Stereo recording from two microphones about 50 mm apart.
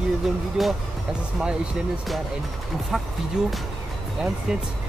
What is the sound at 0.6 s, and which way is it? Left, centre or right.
Speech, centre.